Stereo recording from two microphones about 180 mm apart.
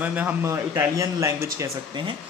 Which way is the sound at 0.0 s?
10° right (ahead or behind).